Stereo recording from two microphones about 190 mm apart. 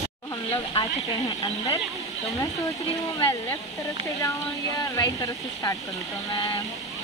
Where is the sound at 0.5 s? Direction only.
25° left (ahead or behind).